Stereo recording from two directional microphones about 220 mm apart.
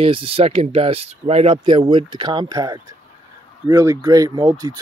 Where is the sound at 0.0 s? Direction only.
25° right (ahead or behind).